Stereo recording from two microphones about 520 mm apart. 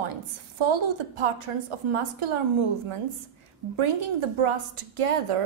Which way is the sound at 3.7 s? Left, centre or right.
Right.